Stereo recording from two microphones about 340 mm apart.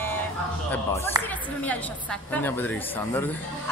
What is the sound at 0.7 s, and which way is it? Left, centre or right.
Speech, centre.